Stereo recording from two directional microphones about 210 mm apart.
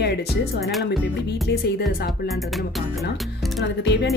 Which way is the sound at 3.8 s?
55° left (ahead or behind).